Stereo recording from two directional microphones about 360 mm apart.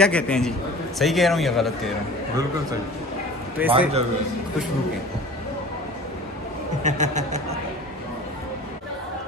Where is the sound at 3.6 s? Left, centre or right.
Centre.